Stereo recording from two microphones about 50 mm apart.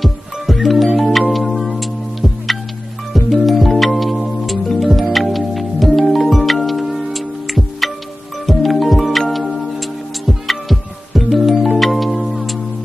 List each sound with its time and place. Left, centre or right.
0.0 s music: centre